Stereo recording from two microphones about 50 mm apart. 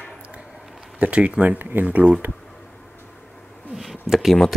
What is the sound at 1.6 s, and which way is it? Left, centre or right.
Speech, right.